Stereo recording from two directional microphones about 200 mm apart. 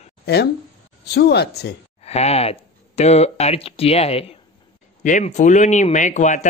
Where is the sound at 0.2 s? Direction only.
55° left (ahead or behind).